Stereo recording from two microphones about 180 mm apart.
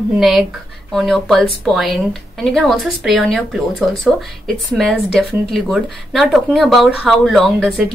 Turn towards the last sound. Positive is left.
turn(degrees=0)  # may be behind; listen again after turning